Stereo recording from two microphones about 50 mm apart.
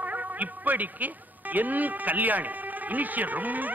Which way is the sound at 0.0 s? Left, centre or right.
Right.